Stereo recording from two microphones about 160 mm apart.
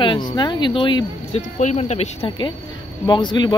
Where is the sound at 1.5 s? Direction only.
45° left (ahead or behind).